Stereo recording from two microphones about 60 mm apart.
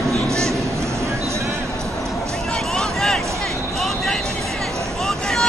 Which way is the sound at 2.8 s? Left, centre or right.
Centre.